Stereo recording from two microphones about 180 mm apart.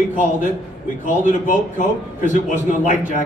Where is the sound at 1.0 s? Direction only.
45° left (ahead or behind).